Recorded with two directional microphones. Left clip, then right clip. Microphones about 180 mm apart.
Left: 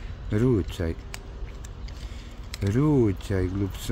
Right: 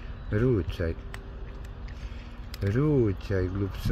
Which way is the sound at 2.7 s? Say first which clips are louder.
Left 3 dB; 25° left (ahead or behind).